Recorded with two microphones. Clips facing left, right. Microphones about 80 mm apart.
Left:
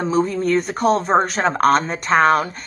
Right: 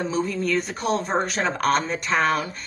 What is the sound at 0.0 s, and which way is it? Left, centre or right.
Speech, left.